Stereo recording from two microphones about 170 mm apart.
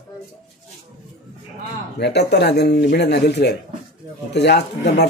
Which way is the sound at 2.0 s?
75° left (ahead or behind).